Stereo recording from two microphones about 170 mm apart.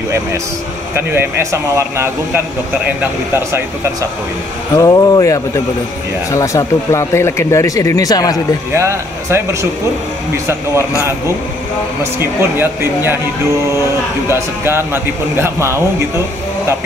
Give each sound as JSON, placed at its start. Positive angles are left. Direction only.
{"t": 0.9, "sound": "a man's voice", "side_deg": -15}
{"t": 4.7, "sound": "speech", "side_deg": 25}
{"t": 8.7, "sound": "a man's voice", "side_deg": -15}
{"t": 12.0, "sound": "a man's voice", "side_deg": -15}
{"t": 14.3, "sound": "a man's voice", "side_deg": -15}